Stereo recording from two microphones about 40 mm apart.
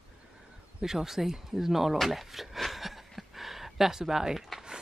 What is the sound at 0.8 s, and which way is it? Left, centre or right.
Speech, centre.